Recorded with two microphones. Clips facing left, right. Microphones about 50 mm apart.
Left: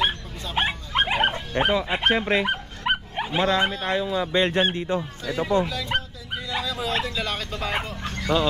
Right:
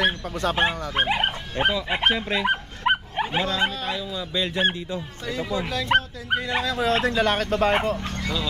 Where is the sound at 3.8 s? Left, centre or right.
Left.